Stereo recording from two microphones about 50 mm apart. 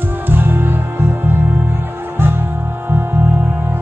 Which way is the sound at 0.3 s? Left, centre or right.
Right.